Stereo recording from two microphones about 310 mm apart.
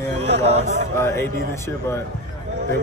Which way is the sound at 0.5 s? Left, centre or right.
Right.